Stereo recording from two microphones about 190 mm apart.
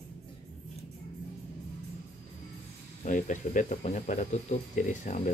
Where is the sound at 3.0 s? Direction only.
40° left (ahead or behind).